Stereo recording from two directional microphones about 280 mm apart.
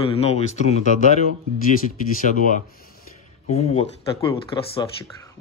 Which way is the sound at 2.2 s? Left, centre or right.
Left.